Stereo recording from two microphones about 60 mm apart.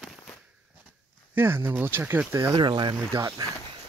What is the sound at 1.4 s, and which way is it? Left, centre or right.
Speech, right.